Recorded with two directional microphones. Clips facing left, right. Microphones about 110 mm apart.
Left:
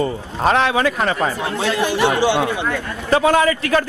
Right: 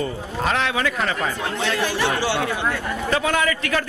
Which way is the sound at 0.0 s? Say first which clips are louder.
Left 5 dB; 35° left (ahead or behind).